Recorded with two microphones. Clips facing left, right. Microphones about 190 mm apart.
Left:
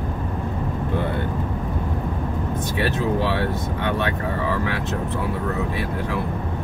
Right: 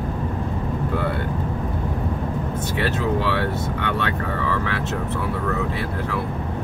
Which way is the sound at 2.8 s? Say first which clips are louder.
Even; 15° left (ahead or behind).